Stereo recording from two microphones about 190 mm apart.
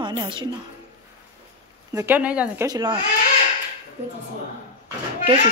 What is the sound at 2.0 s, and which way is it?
Speech, 10° right (ahead or behind).